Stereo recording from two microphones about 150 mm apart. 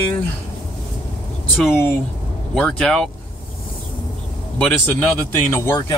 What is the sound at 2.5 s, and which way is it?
Speech, 5° left (ahead or behind).